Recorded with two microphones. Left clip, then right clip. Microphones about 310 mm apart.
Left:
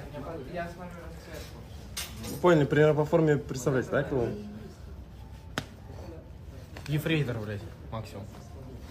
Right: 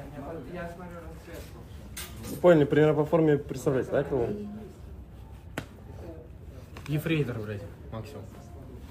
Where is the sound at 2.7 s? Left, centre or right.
Left.